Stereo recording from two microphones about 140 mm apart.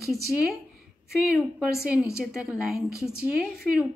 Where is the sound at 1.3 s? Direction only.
5° right (ahead or behind).